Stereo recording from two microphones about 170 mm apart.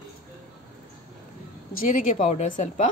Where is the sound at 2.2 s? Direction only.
50° left (ahead or behind).